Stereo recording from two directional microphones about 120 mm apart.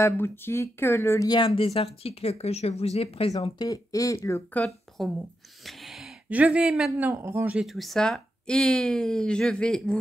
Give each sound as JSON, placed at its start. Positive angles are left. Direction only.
{"t": 0.0, "sound": "speech", "side_deg": 20}
{"t": 1.3, "sound": "speech", "side_deg": 45}
{"t": 3.6, "sound": "speech", "side_deg": 30}
{"t": 4.6, "sound": "a woman's voice", "side_deg": 0}
{"t": 5.7, "sound": "a sound", "side_deg": 0}
{"t": 6.2, "sound": "speech", "side_deg": -10}
{"t": 7.6, "sound": "speech", "side_deg": 0}